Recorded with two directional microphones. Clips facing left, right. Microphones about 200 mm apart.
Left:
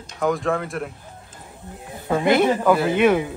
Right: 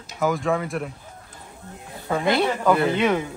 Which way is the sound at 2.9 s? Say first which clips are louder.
Left 4 dB; 15° left (ahead or behind).